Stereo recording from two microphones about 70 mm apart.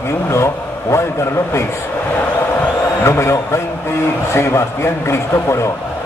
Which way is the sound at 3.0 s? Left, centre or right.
Left.